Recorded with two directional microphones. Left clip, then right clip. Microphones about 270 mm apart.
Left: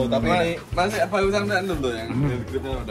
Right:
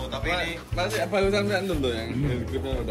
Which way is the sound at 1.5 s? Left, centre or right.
Centre.